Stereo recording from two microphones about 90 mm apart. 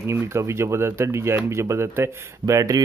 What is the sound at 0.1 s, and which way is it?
Speech, 30° right (ahead or behind).